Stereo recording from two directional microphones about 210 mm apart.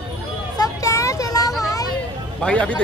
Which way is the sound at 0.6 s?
15° left (ahead or behind).